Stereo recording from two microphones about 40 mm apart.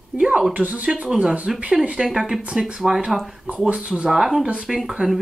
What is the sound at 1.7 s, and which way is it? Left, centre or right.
Speech, right.